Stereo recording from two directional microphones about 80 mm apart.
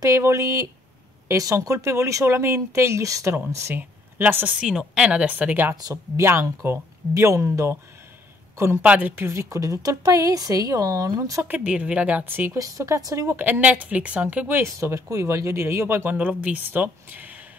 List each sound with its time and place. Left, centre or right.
0.0 s speech: right
4.2 s speech: right
4.6 s speech: centre
6.1 s speech: right
8.8 s speech: centre
9.1 s speech: right
11.4 s speech: centre
12.5 s speech: right
13.3 s speech: right
14.6 s speech: right
16.2 s speech: centre